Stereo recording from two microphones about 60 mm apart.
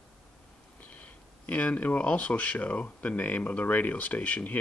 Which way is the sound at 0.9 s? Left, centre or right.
Left.